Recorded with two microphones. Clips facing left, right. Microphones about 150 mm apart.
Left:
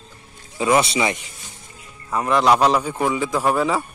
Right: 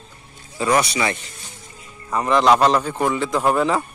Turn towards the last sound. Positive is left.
turn(degrees=5)  # may be behind; listen again after turning